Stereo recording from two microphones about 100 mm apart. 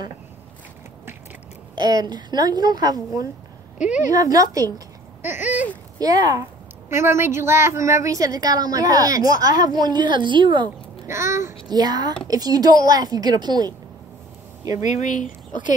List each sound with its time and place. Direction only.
1.8 s a woman's voice: 45° right (ahead or behind)
5.2 s a sound: 20° right (ahead or behind)
5.9 s a woman's voice: 40° right (ahead or behind)
6.9 s a woman's voice: 25° right (ahead or behind); by 10.7 s 50° right (ahead or behind)
11.1 s a child's voice: 30° right (ahead or behind)
11.7 s a woman's voice: 40° right (ahead or behind)